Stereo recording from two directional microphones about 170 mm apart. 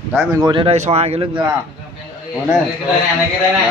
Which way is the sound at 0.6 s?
40° right (ahead or behind).